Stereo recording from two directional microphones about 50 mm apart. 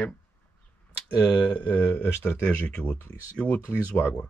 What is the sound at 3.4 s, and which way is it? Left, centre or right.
Speech, left.